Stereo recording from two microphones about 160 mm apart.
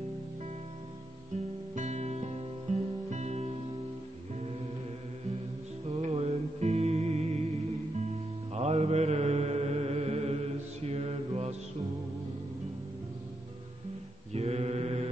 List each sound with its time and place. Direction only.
1.8 s music: 45° right (ahead or behind)
5.9 s music: 40° right (ahead or behind)
8.5 s mantra: 40° right (ahead or behind)
14.3 s mantra: 40° right (ahead or behind)